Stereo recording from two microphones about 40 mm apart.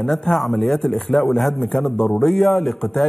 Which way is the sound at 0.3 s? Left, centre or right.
Centre.